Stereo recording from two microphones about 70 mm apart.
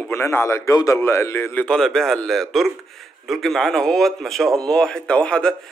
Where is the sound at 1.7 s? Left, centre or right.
Centre.